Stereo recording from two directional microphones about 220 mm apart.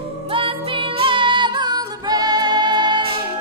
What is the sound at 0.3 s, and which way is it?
Female singing, 25° right (ahead or behind).